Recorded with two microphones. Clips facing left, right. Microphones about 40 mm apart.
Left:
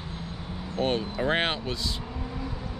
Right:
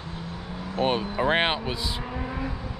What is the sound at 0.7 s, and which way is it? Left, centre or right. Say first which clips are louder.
Speech: right 3 dB; centre.